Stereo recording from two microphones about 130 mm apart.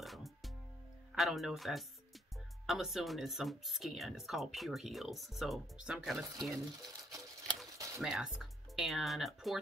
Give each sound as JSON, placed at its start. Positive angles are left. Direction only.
{"t": 0.0, "sound": "music", "side_deg": 0}
{"t": 1.1, "sound": "speech", "side_deg": 0}
{"t": 6.8, "sound": "a sound", "side_deg": -30}
{"t": 8.0, "sound": "speech", "side_deg": -5}